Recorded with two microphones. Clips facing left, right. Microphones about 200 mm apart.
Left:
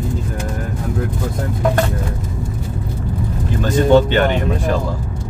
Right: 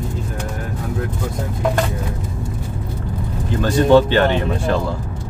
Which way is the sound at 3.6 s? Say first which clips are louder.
Even; 20° left (ahead or behind).